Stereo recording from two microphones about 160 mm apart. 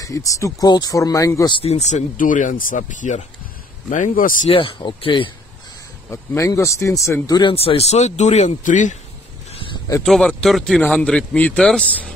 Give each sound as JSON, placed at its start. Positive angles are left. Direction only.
{"t": 0.0, "sound": "speech", "side_deg": 20}
{"t": 1.6, "sound": "speech", "side_deg": 40}
{"t": 4.5, "sound": "speech", "side_deg": 35}
{"t": 6.0, "sound": "speech", "side_deg": 20}
{"t": 7.5, "sound": "speech", "side_deg": 40}
{"t": 10.0, "sound": "speech", "side_deg": 0}